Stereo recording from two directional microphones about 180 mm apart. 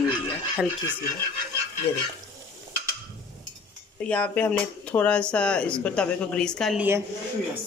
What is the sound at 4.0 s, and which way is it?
Speech, 5° left (ahead or behind).